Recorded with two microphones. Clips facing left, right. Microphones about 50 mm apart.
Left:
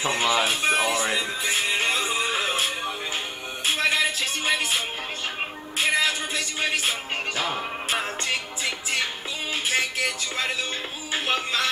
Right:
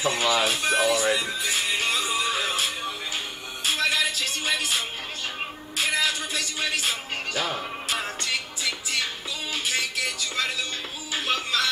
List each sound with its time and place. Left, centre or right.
0.0 s speech: left
0.7 s music: left
7.3 s music: centre
7.9 s music: left